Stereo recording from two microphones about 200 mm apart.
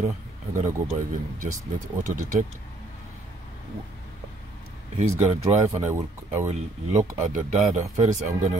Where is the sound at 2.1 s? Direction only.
40° right (ahead or behind).